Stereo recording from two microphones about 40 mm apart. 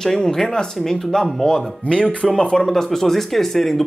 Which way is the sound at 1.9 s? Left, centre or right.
Left.